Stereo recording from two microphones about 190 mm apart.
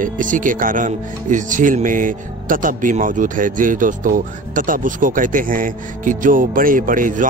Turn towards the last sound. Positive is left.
turn(degrees=-45)  # may be behind; listen again after turning